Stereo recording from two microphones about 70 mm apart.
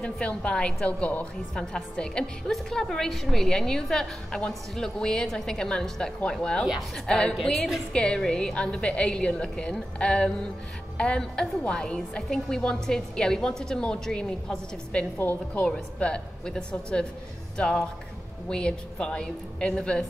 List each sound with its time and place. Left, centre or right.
0.0 s a woman's voice: centre
15.1 s a woman's voice: left
15.6 s a woman's voice: centre